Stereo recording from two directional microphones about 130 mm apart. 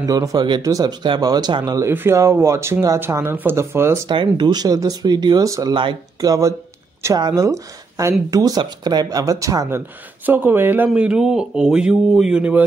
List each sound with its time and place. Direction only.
0.0 s speech: 25° right (ahead or behind)
4.1 s speech: 35° right (ahead or behind)
5.8 s speech: 40° right (ahead or behind)
7.0 s speech: 25° right (ahead or behind)
10.9 s speech: 5° right (ahead or behind)